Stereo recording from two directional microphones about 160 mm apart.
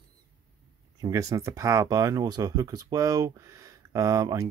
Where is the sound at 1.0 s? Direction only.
20° right (ahead or behind).